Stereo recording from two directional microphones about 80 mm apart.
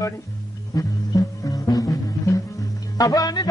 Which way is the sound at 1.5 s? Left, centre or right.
Left.